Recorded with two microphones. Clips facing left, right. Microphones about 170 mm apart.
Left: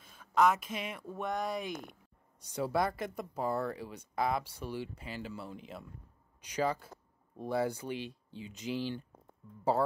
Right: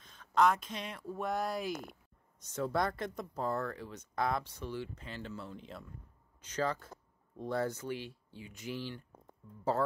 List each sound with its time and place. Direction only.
0.0 s speech: 10° left (ahead or behind)
2.4 s speech: 10° left (ahead or behind)